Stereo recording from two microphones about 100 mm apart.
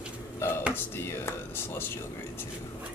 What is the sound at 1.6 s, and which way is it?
Speech, 20° left (ahead or behind).